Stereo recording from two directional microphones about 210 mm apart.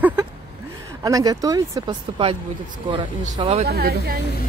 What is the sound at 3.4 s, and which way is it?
Speech, 25° right (ahead or behind).